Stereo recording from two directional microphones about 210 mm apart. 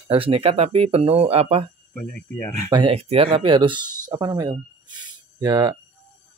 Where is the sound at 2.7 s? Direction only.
25° right (ahead or behind).